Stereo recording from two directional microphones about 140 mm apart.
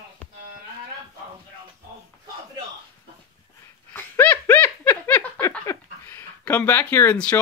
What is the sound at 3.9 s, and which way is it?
Laughter, 15° left (ahead or behind).